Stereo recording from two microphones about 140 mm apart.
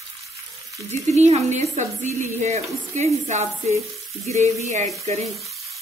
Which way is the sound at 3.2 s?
55° right (ahead or behind).